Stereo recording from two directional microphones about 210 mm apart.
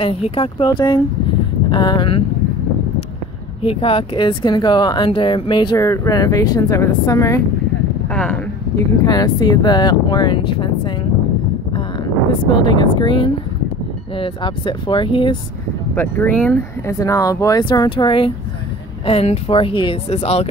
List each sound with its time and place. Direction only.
0.0 s speech: 25° left (ahead or behind)
3.6 s speech: 25° left (ahead or behind)
8.1 s speech: 5° left (ahead or behind)
9.0 s speech: 20° left (ahead or behind)
12.3 s speech: 25° left (ahead or behind)
15.9 s speech: 10° left (ahead or behind); by 20.4 s 30° left (ahead or behind)